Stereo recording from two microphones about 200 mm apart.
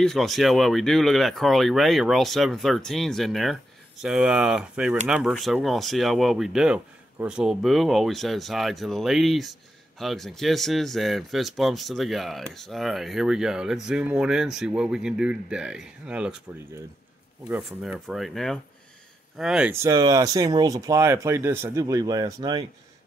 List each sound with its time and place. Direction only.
0.0 s speech: centre (ahead or behind)
17.5 s speech: 5° right (ahead or behind); by 22.7 s 20° right (ahead or behind)